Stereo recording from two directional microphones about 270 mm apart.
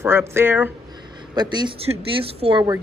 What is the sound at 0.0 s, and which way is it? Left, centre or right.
A woman's voice, centre.